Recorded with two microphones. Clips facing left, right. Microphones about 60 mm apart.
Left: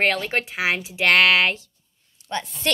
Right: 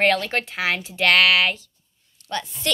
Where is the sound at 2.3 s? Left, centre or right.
Left.